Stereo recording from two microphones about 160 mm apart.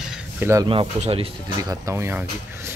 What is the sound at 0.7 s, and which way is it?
Speech, 35° right (ahead or behind).